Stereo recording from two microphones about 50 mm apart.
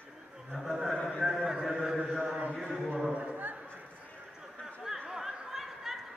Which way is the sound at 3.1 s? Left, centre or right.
Right.